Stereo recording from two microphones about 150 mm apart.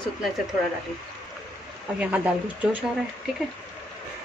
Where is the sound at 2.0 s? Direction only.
10° right (ahead or behind).